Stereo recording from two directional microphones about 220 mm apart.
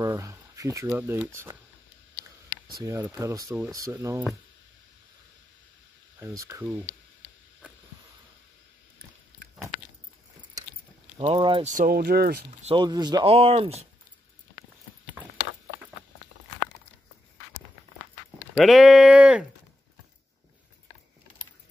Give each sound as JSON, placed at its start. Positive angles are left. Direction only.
{"t": 0.0, "sound": "speech", "side_deg": -15}
{"t": 2.8, "sound": "speech", "side_deg": -15}
{"t": 6.1, "sound": "speech", "side_deg": -10}
{"t": 11.1, "sound": "speech", "side_deg": -20}
{"t": 11.6, "sound": "speech", "side_deg": -35}
{"t": 12.6, "sound": "speech", "side_deg": -20}
{"t": 18.6, "sound": "speech", "side_deg": 0}